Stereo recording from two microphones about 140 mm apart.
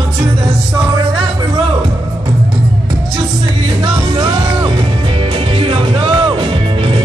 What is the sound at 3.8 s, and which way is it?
Music, 35° right (ahead or behind).